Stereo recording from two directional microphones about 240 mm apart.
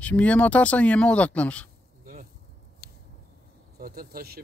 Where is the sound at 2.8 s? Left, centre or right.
Right.